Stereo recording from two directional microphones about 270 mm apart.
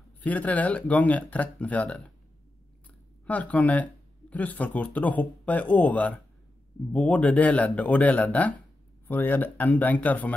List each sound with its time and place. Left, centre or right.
0.2 s speech: centre
3.3 s speech: centre